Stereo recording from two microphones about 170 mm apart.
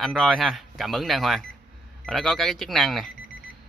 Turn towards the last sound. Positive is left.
turn(degrees=0)  # may be behind; listen again after turning